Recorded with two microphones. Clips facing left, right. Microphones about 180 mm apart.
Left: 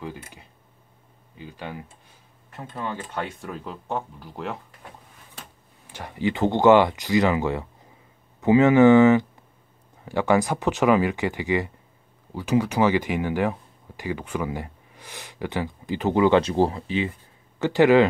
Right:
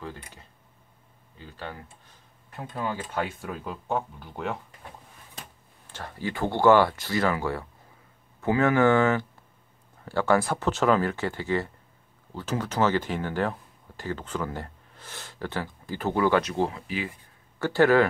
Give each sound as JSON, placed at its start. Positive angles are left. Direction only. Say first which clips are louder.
{"t": 0.0, "sound": "speech", "louder": "left 3 dB", "side_deg": 10}
{"t": 2.5, "sound": "speech", "louder": "even", "side_deg": 0}
{"t": 5.9, "sound": "speech", "louder": "left 7 dB", "side_deg": 15}